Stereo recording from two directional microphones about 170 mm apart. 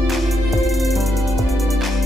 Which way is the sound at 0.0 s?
Centre (ahead or behind).